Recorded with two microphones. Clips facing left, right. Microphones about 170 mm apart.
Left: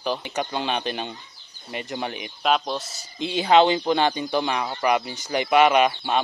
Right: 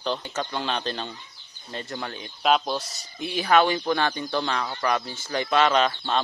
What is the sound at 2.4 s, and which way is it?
Speech, centre (ahead or behind).